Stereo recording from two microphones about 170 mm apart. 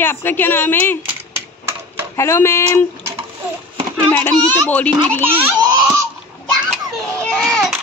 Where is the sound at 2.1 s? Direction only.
15° left (ahead or behind).